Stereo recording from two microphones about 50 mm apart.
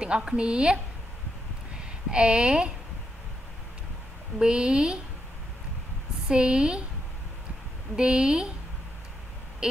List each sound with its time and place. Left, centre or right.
0.0 s a woman's voice: centre
2.0 s a woman's voice: centre
4.4 s a woman's voice: centre
6.2 s a woman's voice: centre
7.9 s a woman's voice: centre
9.6 s owl: centre